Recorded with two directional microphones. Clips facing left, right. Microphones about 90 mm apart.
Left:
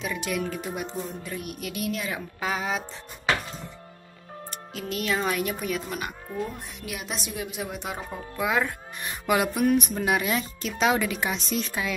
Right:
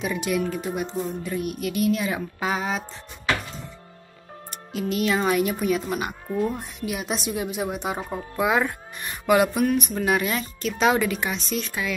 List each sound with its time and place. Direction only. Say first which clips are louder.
0.0 s speech: right 4 dB; 10° right (ahead or behind)
2.0 s speech: right 5 dB; 10° right (ahead or behind)
4.5 s speech: right 7 dB; 10° right (ahead or behind)
6.5 s a woman's voice: right 7 dB; 20° right (ahead or behind)
9.2 s speech: right 4 dB; centre (ahead or behind)
9.7 s speech: even; 10° left (ahead or behind)
11.1 s speech: right 1 dB; 15° left (ahead or behind)